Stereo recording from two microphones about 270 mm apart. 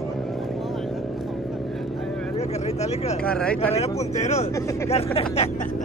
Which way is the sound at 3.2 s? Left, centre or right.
Centre.